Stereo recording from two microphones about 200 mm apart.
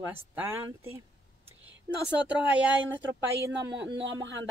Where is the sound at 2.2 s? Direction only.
5° right (ahead or behind).